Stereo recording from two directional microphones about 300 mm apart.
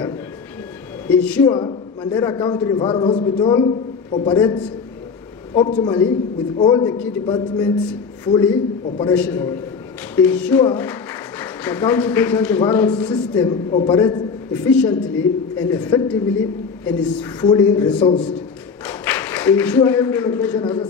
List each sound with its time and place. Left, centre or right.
1.0 s speech: centre
1.5 s speech: centre
9.1 s a man's voice: centre